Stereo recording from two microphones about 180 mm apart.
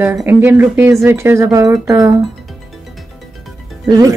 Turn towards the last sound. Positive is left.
turn(degrees=-20)  # may be behind; listen again after turning